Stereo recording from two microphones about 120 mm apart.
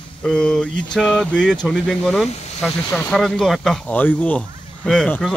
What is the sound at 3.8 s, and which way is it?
Speech, 15° left (ahead or behind).